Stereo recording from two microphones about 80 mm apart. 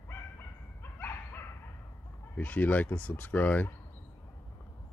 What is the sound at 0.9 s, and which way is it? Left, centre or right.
Dog, left.